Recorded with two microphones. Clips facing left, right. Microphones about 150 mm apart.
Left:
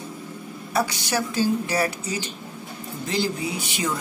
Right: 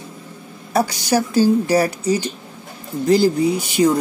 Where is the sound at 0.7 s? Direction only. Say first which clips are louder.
Right 7 dB; 40° right (ahead or behind).